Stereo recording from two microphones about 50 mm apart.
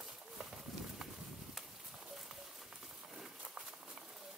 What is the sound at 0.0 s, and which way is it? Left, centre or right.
Horse, centre.